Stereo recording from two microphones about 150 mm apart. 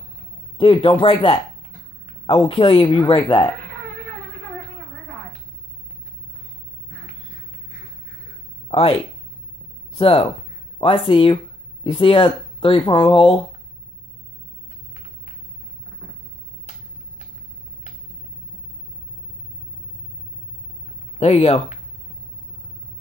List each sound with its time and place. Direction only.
0.6 s speech: 35° left (ahead or behind)
8.6 s a sound: 40° left (ahead or behind)
9.9 s speech: 40° left (ahead or behind)
21.2 s speech: 45° left (ahead or behind)